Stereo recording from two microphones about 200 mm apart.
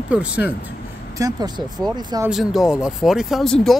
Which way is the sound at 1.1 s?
15° right (ahead or behind).